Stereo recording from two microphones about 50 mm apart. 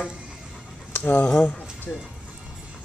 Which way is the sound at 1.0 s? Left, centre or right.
Left.